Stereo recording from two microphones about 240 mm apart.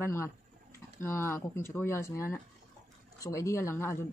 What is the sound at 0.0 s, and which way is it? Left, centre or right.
Speech, centre.